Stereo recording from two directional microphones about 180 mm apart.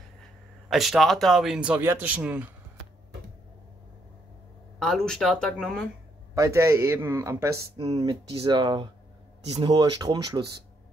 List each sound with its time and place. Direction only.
0.7 s speech: centre (ahead or behind)
4.7 s speech: centre (ahead or behind)
6.3 s speech: 15° right (ahead or behind)
7.7 s speech: 30° right (ahead or behind)